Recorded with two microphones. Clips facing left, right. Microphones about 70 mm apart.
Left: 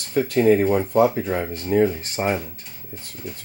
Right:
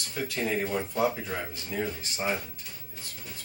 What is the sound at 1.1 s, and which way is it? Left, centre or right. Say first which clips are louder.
Speech: left 10 dB; left.